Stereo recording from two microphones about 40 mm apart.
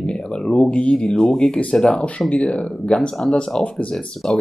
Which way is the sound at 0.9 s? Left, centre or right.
Centre.